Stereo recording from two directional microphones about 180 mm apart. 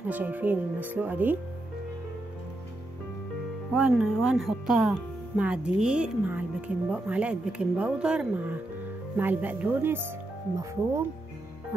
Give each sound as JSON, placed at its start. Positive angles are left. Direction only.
{"t": 0.1, "sound": "speech", "side_deg": -10}
{"t": 3.7, "sound": "speech", "side_deg": -5}